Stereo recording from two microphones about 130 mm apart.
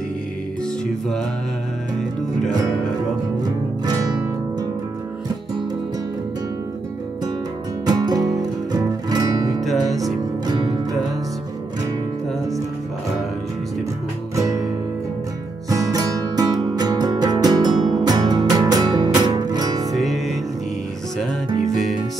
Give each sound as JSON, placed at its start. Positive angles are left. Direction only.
{"t": 3.8, "sound": "music", "side_deg": -30}
{"t": 7.8, "sound": "music", "side_deg": -30}
{"t": 9.6, "sound": "music", "side_deg": 0}
{"t": 10.4, "sound": "music", "side_deg": -30}
{"t": 15.7, "sound": "music", "side_deg": -30}
{"t": 19.9, "sound": "music", "side_deg": 0}